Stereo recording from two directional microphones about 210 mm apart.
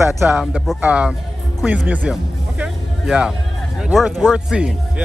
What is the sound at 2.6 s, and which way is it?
Music, 5° right (ahead or behind).